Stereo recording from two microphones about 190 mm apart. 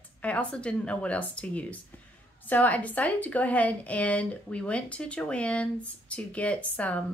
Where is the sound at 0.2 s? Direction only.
5° left (ahead or behind).